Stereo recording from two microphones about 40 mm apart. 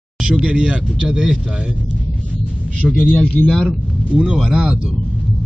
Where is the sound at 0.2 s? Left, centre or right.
Right.